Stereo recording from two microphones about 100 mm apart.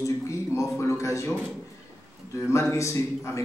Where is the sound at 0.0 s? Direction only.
30° left (ahead or behind).